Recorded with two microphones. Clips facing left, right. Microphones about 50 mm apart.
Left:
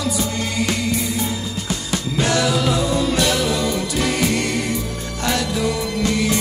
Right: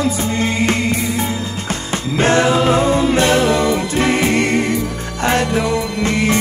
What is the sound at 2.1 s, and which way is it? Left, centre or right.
A capella, right.